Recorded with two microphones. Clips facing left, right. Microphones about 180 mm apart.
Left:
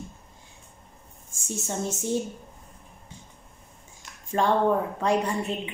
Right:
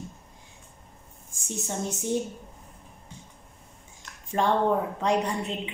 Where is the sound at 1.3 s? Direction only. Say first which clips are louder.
Left 1 dB; 15° right (ahead or behind).